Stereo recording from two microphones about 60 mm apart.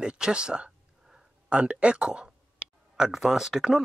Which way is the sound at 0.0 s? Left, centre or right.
Centre.